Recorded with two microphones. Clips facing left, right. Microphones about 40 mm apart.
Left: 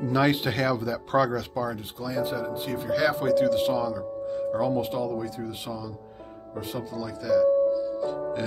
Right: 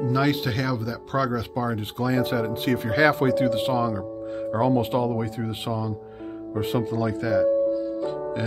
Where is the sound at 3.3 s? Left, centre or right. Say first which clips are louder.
Even; right.